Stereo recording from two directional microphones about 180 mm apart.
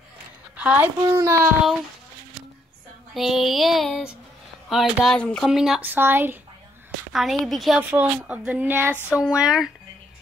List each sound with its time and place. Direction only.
0.6 s speech: 10° right (ahead or behind)
3.2 s speech: centre (ahead or behind)
7.1 s speech: centre (ahead or behind)